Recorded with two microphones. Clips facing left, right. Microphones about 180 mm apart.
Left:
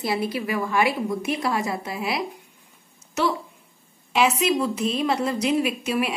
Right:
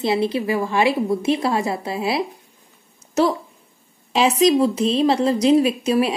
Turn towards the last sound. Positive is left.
turn(degrees=-35)  # may be behind; listen again after turning